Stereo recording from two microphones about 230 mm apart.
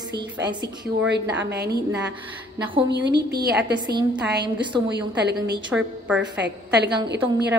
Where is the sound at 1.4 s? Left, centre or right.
Right.